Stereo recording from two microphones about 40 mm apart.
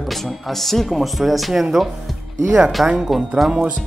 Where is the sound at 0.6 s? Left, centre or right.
Centre.